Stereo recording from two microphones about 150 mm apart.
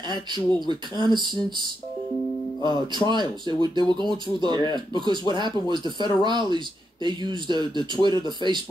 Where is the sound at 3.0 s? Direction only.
30° right (ahead or behind).